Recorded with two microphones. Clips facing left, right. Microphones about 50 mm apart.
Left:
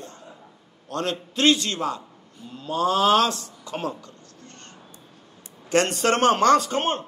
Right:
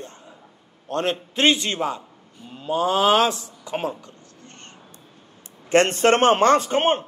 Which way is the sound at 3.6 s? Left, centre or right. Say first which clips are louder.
Right 4 dB; centre.